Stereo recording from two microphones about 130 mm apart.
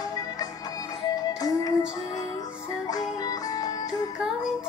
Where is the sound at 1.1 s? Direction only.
30° left (ahead or behind).